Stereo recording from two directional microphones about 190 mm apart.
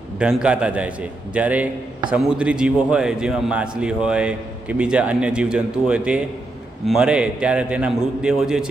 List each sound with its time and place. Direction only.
0.2 s a man's voice: 5° right (ahead or behind)